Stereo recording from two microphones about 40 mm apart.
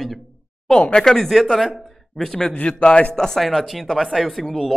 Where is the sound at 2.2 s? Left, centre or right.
Centre.